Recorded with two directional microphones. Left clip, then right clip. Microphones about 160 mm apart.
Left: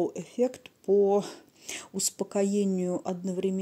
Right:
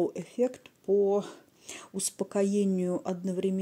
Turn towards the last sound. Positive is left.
turn(degrees=0)  # may be behind; listen again after turning